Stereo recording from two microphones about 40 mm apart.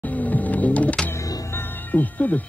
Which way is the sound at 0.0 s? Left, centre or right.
Left.